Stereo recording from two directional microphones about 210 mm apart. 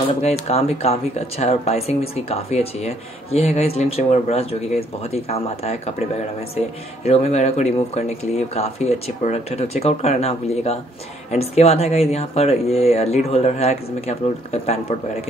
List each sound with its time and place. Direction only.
0.2 s speech: 30° left (ahead or behind)
7.1 s speech: 30° left (ahead or behind)